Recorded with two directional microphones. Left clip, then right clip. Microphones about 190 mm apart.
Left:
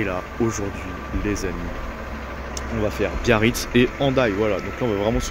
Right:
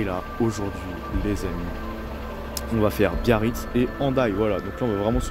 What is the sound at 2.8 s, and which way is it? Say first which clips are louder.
Speech: right 2 dB; 45° right (ahead or behind).